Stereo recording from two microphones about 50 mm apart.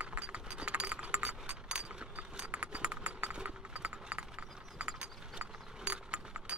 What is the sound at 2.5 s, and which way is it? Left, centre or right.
Clip-clop, right.